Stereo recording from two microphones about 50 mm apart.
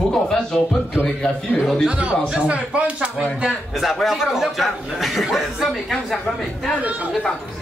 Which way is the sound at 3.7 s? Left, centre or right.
Centre.